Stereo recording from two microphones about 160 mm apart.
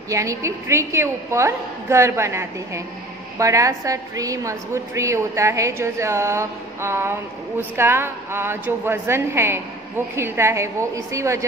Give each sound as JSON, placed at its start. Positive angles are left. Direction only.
{"t": 0.1, "sound": "a woman's voice", "side_deg": -20}